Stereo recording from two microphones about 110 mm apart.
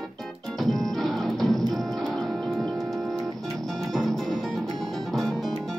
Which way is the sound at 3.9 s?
Centre (ahead or behind).